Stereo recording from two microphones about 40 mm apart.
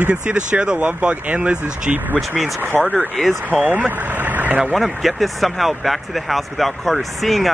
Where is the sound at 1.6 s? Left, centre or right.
Right.